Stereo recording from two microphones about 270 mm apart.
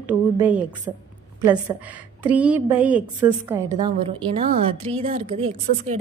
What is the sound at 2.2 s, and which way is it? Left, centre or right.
A woman's voice, centre.